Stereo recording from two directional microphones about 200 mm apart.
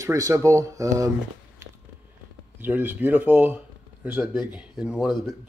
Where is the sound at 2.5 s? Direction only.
10° right (ahead or behind).